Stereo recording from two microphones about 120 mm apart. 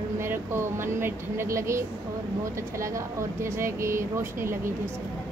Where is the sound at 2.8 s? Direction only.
25° right (ahead or behind).